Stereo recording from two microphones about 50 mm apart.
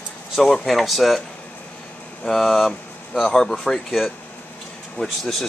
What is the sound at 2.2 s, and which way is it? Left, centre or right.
Speech, centre.